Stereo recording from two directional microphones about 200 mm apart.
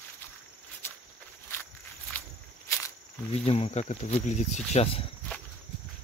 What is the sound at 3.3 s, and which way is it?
Speech, 30° left (ahead or behind).